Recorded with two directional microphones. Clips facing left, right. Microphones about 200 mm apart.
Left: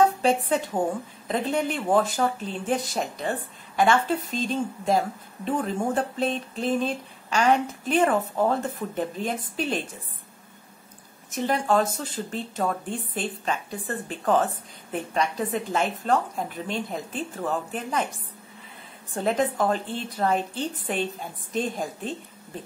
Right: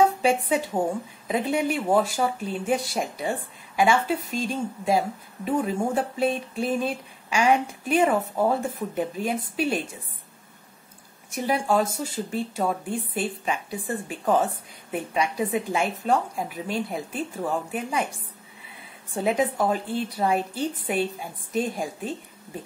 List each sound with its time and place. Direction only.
0.0 s a woman's voice: 10° right (ahead or behind)
11.2 s a woman's voice: 10° right (ahead or behind)
19.1 s a woman's voice: 10° right (ahead or behind)